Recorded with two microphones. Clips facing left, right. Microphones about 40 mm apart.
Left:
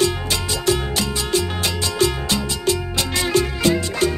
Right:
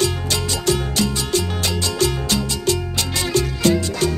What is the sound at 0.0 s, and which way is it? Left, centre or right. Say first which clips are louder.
Music: left 1 dB; centre.